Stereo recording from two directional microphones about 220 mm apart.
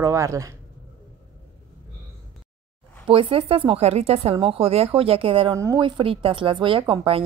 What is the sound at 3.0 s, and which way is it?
Speech, 25° right (ahead or behind).